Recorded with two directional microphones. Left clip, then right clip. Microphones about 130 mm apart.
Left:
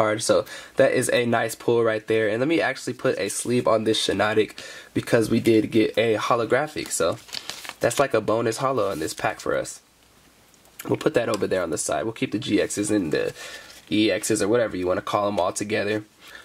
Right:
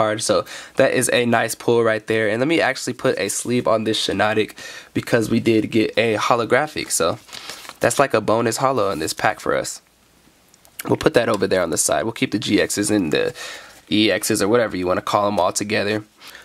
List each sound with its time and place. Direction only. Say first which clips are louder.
0.0 s speech: right 2 dB; 25° right (ahead or behind); by 9.7 s 45° right (ahead or behind)
10.8 s speech: right 5 dB; 35° right (ahead or behind)